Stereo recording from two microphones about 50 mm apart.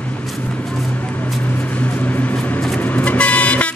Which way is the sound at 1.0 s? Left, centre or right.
Left.